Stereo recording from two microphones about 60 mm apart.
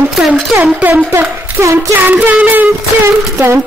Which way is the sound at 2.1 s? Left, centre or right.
Right.